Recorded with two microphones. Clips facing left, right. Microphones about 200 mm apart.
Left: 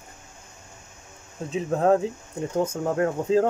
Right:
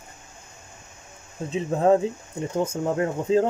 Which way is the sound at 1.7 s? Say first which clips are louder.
Right 1 dB; 5° right (ahead or behind).